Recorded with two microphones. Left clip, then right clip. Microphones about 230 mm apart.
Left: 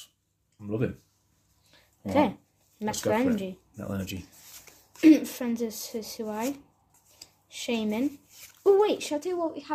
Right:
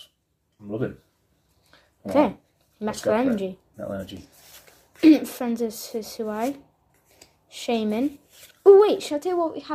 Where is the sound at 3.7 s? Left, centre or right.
Left.